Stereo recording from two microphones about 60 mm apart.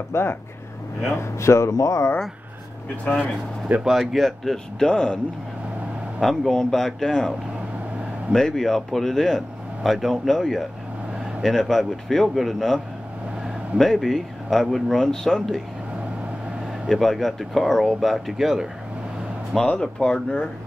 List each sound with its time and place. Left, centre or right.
0.1 s speech: left
3.8 s speech: centre
6.2 s speech: centre
16.9 s speech: centre
19.6 s speech: centre